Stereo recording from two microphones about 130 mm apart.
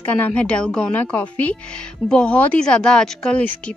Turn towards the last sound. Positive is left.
turn(degrees=10)  # may be behind; listen again after turning